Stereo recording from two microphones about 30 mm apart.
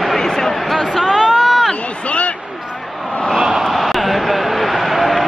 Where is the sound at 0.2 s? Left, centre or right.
Centre.